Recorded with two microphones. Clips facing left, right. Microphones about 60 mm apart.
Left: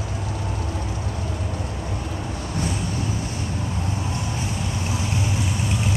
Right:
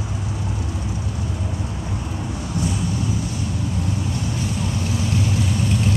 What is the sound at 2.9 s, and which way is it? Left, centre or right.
Vehicle, left.